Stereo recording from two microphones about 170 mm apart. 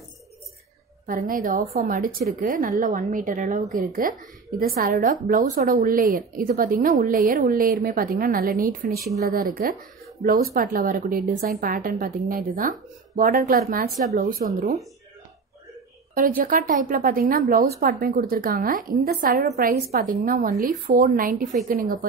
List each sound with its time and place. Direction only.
1.0 s a woman's voice: 55° right (ahead or behind)
16.2 s a woman's voice: 55° right (ahead or behind)